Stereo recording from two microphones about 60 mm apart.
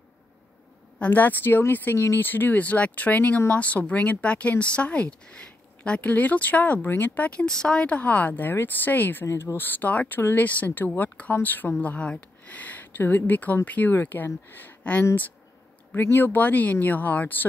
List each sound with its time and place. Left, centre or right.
0.9 s speech: left
7.4 s speech: centre; by 9.2 s left
9.2 s speech: left
9.6 s speech: left
14.8 s speech: left
16.1 s speech: left